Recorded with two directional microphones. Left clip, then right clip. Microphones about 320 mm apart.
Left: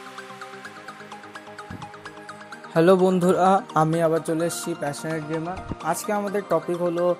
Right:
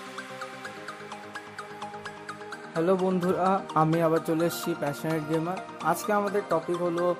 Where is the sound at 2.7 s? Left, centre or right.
Centre.